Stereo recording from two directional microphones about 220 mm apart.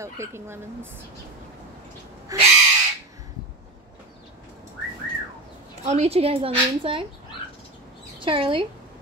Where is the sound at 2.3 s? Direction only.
15° right (ahead or behind).